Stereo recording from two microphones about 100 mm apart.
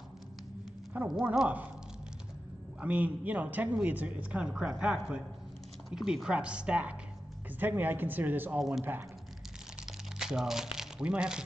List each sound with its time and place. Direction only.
0.9 s speech: 20° right (ahead or behind)
2.8 s a woman's voice: 15° right (ahead or behind)
8.5 s speech: 5° right (ahead or behind)
10.1 s speech: 5° right (ahead or behind)